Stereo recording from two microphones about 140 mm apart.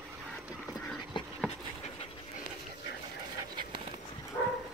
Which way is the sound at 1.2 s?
35° left (ahead or behind).